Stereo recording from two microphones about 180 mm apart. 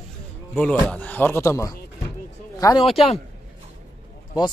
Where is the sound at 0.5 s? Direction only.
5° left (ahead or behind).